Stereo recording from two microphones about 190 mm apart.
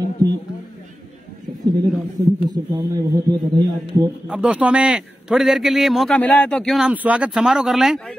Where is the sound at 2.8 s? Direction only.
20° right (ahead or behind).